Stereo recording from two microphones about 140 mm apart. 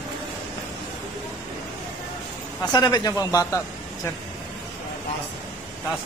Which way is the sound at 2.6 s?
30° left (ahead or behind).